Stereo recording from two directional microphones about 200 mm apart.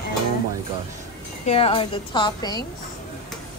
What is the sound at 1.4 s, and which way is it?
A woman's voice, 30° left (ahead or behind).